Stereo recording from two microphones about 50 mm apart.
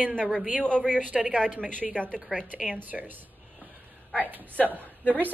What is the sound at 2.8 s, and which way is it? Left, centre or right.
A woman's voice, right.